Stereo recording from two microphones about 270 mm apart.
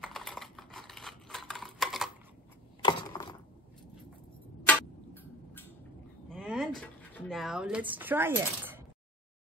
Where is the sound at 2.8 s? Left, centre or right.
Centre.